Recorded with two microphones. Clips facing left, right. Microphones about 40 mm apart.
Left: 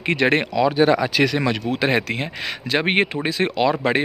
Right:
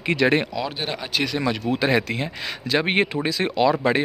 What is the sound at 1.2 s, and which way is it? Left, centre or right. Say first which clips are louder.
Speech: left 4 dB; left.